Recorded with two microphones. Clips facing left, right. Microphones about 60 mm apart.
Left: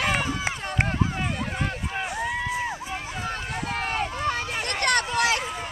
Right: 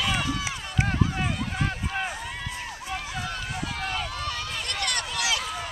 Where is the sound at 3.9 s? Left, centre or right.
Left.